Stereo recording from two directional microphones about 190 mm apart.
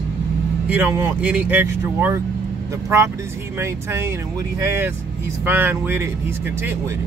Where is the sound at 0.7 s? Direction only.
10° right (ahead or behind).